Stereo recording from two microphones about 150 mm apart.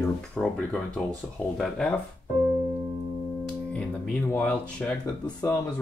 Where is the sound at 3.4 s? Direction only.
10° left (ahead or behind).